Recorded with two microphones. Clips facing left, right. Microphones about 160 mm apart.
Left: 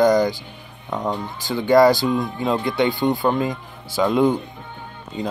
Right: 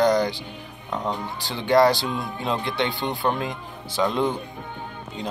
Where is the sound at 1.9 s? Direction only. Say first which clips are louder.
Left 7 dB; 45° left (ahead or behind).